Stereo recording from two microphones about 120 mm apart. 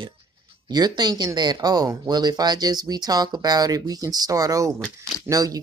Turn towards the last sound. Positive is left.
turn(degrees=-30)  # may be behind; listen again after turning